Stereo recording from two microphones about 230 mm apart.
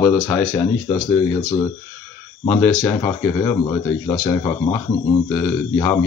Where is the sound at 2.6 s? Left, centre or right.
Centre.